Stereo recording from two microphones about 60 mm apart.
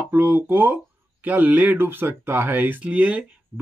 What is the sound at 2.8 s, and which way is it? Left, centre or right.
Speech, right.